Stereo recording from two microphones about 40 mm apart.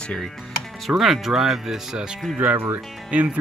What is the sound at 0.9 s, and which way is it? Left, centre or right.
Speech, centre.